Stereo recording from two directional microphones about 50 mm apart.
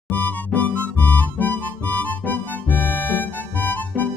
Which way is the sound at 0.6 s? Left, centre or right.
Left.